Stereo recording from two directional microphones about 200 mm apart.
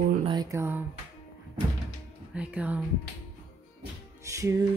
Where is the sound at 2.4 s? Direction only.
5° right (ahead or behind).